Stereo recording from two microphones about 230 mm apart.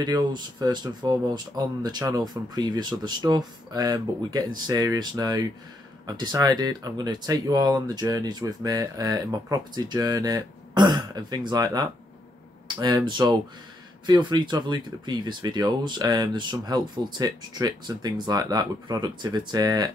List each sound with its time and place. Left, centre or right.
0.0 s speech: centre